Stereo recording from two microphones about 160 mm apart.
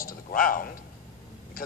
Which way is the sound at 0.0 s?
60° left (ahead or behind).